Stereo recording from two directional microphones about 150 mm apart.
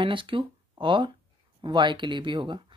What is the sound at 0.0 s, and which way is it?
Speech, 35° right (ahead or behind).